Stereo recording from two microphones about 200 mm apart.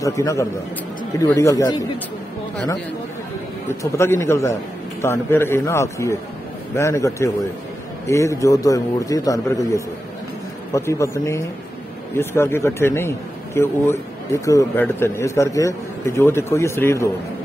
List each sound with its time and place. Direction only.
0.0 s a man's voice: 15° left (ahead or behind)
3.6 s a man's voice: 15° left (ahead or behind)